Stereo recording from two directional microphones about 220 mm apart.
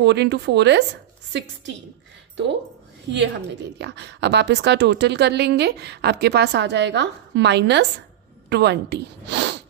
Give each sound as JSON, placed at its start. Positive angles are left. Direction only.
{"t": 0.0, "sound": "speech", "side_deg": -50}
{"t": 3.1, "sound": "a woman's voice", "side_deg": -55}